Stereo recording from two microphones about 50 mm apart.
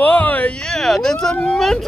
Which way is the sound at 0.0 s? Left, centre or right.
Left.